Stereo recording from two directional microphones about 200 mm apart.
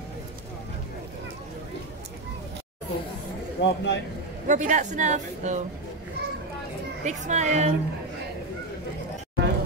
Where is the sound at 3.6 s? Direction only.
60° left (ahead or behind).